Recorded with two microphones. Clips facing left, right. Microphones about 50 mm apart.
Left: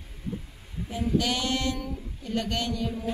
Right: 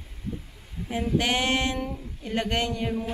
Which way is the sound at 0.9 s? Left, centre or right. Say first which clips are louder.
Right 2 dB; right.